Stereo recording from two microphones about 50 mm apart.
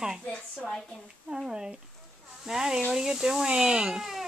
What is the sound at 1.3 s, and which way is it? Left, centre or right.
Speech, centre.